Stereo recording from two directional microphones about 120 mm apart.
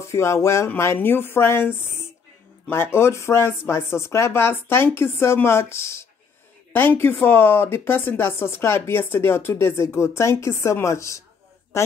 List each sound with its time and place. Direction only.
0.0 s speech: 25° left (ahead or behind)